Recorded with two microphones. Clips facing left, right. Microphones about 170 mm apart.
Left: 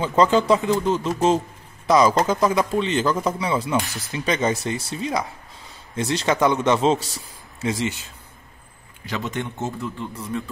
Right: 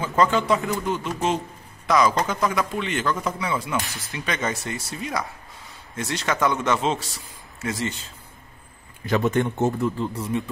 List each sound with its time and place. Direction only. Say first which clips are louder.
0.0 s speech: left 3 dB; 30° left (ahead or behind)
9.0 s speech: right 7 dB; 50° right (ahead or behind)
9.9 s speech: right 3 dB; 30° right (ahead or behind)